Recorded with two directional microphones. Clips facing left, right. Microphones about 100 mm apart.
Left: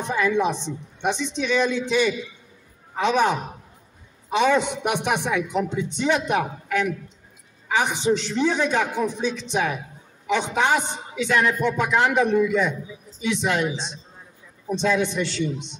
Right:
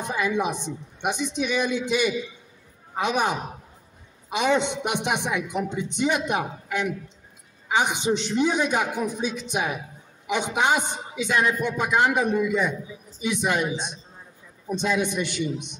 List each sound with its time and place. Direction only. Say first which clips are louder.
0.0 s speech: left 3 dB; 15° right (ahead or behind)